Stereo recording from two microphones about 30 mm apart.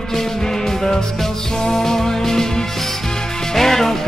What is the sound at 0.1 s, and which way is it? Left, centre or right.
Music, centre.